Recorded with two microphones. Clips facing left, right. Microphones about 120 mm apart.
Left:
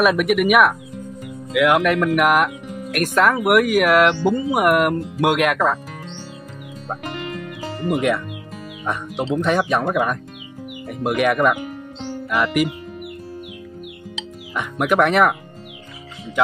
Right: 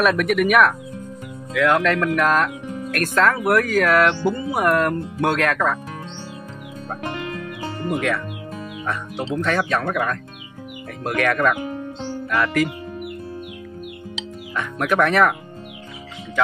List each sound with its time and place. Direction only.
0.0 s speech: 10° left (ahead or behind)
7.9 s speech: 20° left (ahead or behind)
14.5 s speech: 15° left (ahead or behind)